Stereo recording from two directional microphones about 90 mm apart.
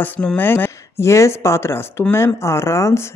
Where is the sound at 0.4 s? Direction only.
25° left (ahead or behind).